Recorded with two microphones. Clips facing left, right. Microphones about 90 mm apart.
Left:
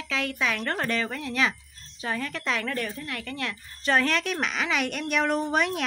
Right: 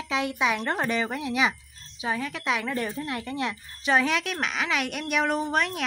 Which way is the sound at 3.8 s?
5° right (ahead or behind).